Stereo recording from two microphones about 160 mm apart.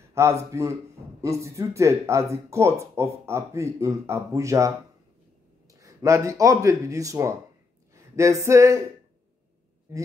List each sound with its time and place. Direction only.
0.1 s speech: 15° right (ahead or behind)
7.9 s a sound: 20° right (ahead or behind)
9.9 s speech: 15° right (ahead or behind)